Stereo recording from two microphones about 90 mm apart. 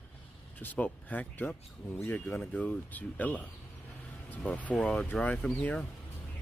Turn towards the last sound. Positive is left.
turn(degrees=15)  # may be behind; listen again after turning